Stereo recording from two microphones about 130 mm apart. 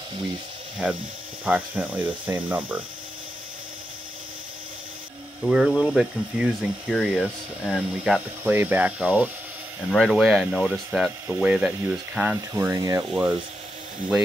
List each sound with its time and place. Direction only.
1.4 s speech: 10° right (ahead or behind)
5.4 s speech: 5° right (ahead or behind)
8.5 s speech: 15° right (ahead or behind)
9.8 s speech: centre (ahead or behind)
12.5 s speech: 25° right (ahead or behind)
13.1 s speech: 10° right (ahead or behind)